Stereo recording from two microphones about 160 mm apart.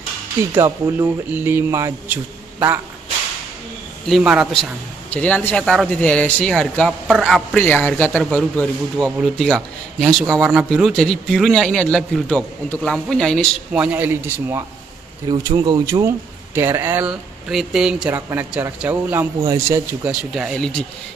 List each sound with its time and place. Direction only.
0.6 s a man's voice: 20° right (ahead or behind)
4.1 s a man's voice: 5° right (ahead or behind)
5.1 s speech: 10° left (ahead or behind)
13.7 s a man's voice: 10° right (ahead or behind)
15.2 s a man's voice: 25° right (ahead or behind)
20.1 s speech: 5° right (ahead or behind)